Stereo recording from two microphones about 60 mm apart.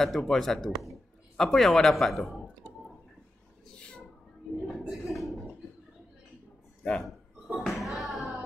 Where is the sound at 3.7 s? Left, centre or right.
Centre.